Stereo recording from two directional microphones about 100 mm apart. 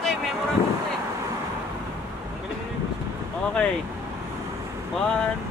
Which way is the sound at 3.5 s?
10° left (ahead or behind).